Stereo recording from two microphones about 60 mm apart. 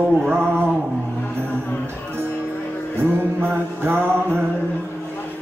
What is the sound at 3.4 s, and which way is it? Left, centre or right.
Music, right.